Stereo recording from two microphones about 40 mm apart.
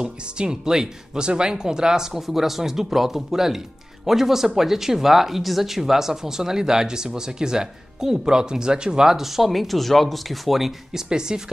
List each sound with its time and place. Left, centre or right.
0.0 s speech: centre
11.1 s speech: centre